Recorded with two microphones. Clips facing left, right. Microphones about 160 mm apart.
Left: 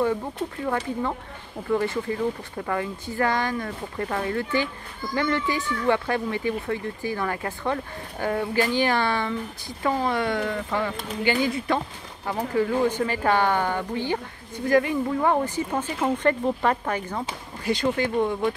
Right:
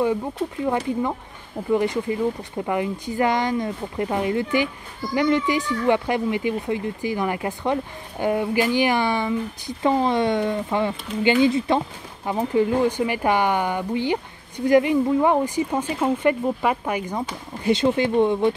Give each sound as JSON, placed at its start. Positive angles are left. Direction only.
{"t": 0.0, "sound": "speech", "side_deg": -15}